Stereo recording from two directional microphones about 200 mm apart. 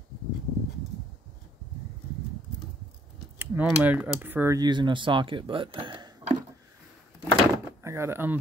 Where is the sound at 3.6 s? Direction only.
10° right (ahead or behind).